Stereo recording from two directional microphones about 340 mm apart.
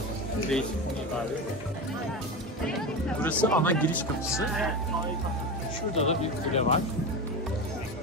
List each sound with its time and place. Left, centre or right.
3.2 s speech: centre
5.9 s speech: centre